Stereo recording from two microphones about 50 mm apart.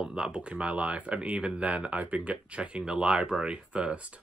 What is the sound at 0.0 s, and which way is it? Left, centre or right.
Speech, centre.